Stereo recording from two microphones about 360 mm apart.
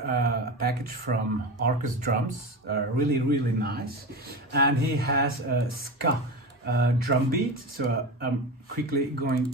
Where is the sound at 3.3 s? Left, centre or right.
Right.